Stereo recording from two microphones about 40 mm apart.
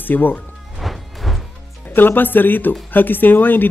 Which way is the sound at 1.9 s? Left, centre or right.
Left.